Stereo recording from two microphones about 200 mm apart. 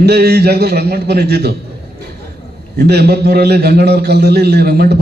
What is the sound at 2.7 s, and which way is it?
A man's voice, 55° right (ahead or behind).